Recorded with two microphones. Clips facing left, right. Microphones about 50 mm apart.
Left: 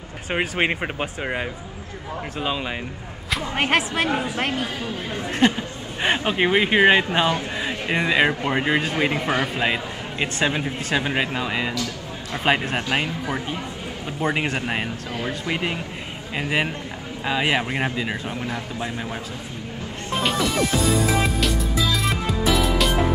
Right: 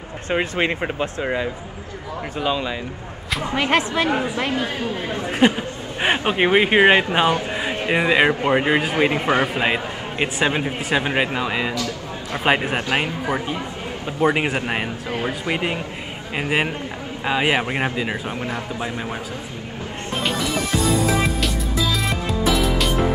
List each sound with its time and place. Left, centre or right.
0.6 s speech: left
2.4 s speech: centre
5.3 s a man's voice: centre
7.9 s a man's voice: centre
9.1 s a man's voice: right
9.6 s a man's voice: centre
12.7 s speech: right
14.2 s a man's voice: centre
15.1 s speech: right
15.5 s a man's voice: centre
20.2 s music: centre